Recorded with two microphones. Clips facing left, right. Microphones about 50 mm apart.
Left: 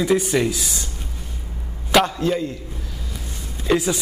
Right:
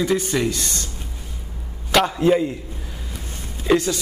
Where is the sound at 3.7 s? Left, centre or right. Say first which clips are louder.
Right 2 dB; centre.